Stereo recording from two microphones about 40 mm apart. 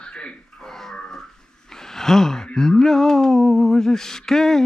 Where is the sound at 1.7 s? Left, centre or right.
Centre.